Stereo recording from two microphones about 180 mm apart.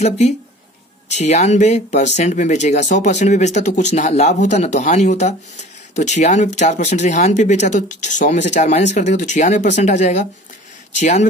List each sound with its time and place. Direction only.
1.1 s speech: 40° left (ahead or behind)